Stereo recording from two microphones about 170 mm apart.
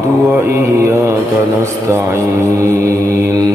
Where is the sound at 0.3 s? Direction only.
15° right (ahead or behind).